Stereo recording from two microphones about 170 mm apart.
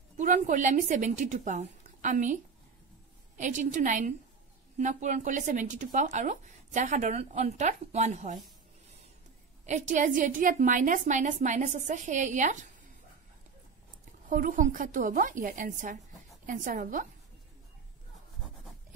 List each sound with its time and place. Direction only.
0.2 s speech: 50° right (ahead or behind)
3.3 s speech: 45° right (ahead or behind)
9.7 s speech: 45° right (ahead or behind)
14.3 s speech: 55° right (ahead or behind)